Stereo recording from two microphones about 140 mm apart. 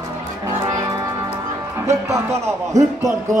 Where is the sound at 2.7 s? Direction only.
20° right (ahead or behind).